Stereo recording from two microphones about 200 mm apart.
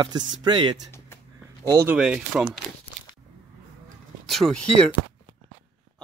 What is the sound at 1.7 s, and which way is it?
Speech, 10° right (ahead or behind).